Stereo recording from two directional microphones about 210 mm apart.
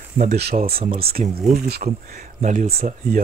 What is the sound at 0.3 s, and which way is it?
Speech, 50° right (ahead or behind).